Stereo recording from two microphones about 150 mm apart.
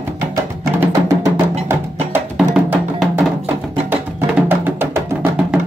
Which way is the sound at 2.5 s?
10° right (ahead or behind).